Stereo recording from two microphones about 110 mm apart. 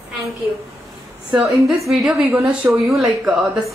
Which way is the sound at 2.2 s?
15° right (ahead or behind).